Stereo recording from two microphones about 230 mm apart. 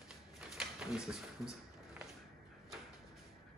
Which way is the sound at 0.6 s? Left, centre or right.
Centre.